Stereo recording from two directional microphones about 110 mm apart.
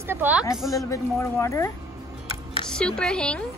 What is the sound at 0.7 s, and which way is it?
Speech, 30° left (ahead or behind).